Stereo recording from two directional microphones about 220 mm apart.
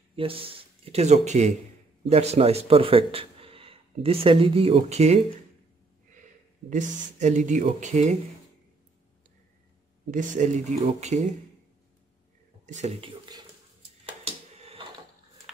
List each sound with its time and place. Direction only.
0.1 s a man's voice: 25° right (ahead or behind)
6.7 s speech: 30° right (ahead or behind)
10.1 s speech: 35° right (ahead or behind)
12.6 s speech: 30° right (ahead or behind)
14.6 s a sound: 25° right (ahead or behind)